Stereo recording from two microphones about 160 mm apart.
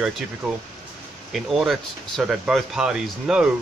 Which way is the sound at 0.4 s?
Centre (ahead or behind).